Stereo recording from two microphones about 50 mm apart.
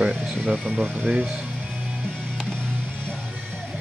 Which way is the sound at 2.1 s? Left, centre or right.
Centre.